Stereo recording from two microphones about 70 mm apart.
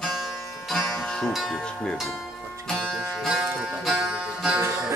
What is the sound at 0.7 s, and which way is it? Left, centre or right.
Music, centre.